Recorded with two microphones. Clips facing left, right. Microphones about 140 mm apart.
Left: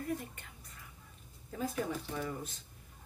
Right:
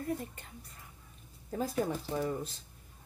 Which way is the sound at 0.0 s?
35° right (ahead or behind).